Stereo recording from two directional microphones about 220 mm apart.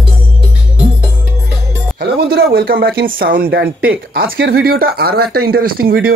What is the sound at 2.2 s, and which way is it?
Speech, 45° right (ahead or behind).